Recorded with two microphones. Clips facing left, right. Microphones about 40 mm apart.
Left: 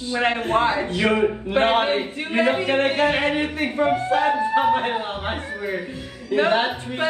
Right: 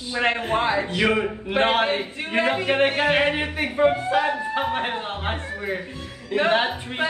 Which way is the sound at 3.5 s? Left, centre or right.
Centre.